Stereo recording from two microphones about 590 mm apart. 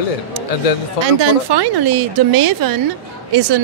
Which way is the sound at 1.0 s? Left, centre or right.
Right.